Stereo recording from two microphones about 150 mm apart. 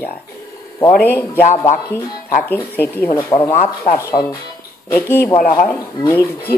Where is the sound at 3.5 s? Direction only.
60° left (ahead or behind).